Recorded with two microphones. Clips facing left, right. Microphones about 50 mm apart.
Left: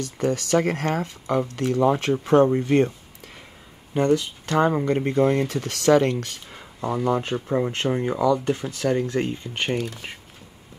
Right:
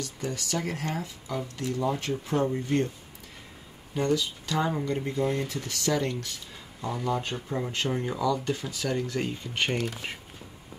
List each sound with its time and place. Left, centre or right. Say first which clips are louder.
0.0 s speech: left 9 dB; left
3.9 s speech: left 6 dB; left
6.5 s a sound: left 7 dB; left
7.1 s speech: left 6 dB; left
9.1 s speech: left 5 dB; centre